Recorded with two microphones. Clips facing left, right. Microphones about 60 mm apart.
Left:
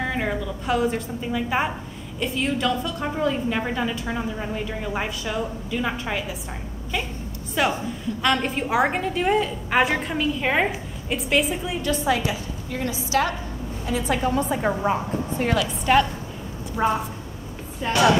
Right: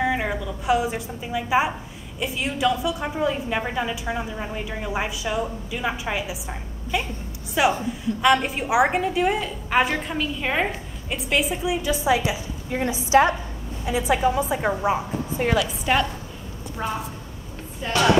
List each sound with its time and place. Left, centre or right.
0.0 s a woman's voice: centre
7.6 s a woman's voice: centre
12.6 s a woman's voice: right
13.8 s a woman's voice: centre
16.7 s a woman's voice: centre
17.8 s a woman's voice: centre